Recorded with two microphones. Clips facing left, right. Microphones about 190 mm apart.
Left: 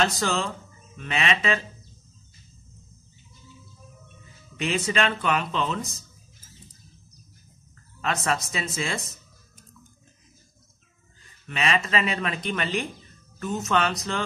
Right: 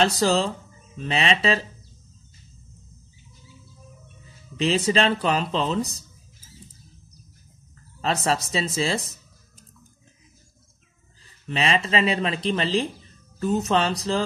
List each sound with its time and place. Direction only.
0.0 s speech: 35° right (ahead or behind)
4.6 s speech: 35° right (ahead or behind)
8.0 s speech: 35° right (ahead or behind)
11.4 s speech: 30° right (ahead or behind)